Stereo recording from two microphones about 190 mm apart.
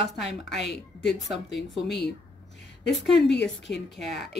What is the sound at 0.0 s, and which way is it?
Speech, centre (ahead or behind).